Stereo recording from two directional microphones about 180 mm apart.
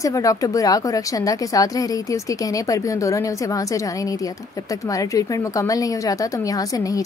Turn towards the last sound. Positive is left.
turn(degrees=20)  # may be behind; listen again after turning